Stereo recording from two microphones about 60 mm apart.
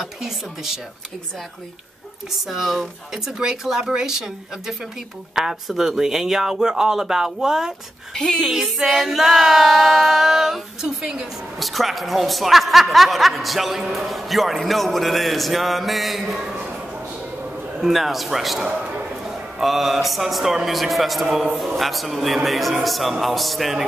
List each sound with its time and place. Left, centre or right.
2.4 s speech: centre
8.1 s speech: centre
8.5 s speech: centre
11.6 s speech: centre
17.7 s speech: centre
18.7 s a sound: centre
19.6 s speech: centre